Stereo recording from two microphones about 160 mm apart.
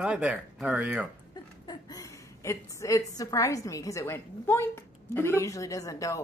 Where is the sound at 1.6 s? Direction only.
25° left (ahead or behind).